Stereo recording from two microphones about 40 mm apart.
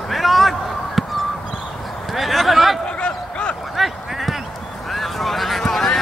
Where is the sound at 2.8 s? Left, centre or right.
Left.